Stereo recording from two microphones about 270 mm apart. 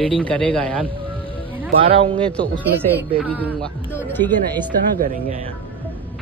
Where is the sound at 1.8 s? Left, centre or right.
Centre.